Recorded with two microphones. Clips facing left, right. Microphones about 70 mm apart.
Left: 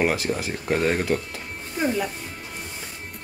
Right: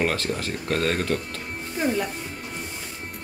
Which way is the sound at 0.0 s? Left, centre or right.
Centre.